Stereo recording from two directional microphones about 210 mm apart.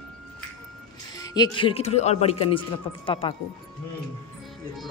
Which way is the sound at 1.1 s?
20° left (ahead or behind).